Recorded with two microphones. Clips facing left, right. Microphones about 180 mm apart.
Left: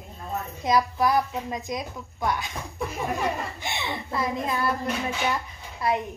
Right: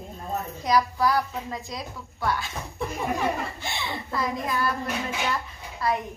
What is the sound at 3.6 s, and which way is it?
A woman's voice, 20° left (ahead or behind).